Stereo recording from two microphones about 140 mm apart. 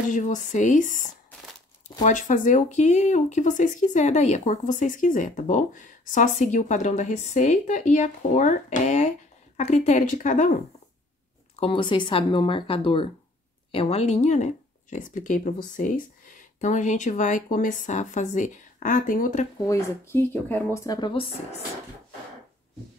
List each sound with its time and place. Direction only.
0.1 s speech: 65° left (ahead or behind)
2.0 s speech: 65° left (ahead or behind)
11.5 s speech: 40° left (ahead or behind); by 19.4 s 75° left (ahead or behind)
19.6 s speech: 20° left (ahead or behind)
21.1 s speech: 40° left (ahead or behind)